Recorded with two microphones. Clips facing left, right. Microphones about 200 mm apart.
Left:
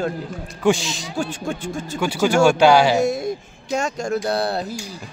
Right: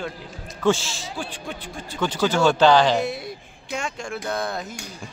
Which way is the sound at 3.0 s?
45° left (ahead or behind).